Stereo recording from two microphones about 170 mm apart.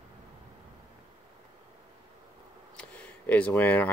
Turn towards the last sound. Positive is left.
turn(degrees=10)  # may be behind; listen again after turning